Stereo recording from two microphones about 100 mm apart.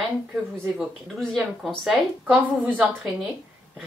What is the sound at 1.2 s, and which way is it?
Speech, 5° left (ahead or behind).